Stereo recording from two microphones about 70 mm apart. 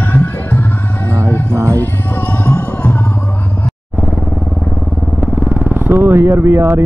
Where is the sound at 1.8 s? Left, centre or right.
Left.